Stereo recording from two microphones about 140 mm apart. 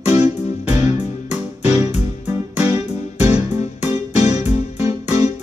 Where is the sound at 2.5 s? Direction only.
50° left (ahead or behind).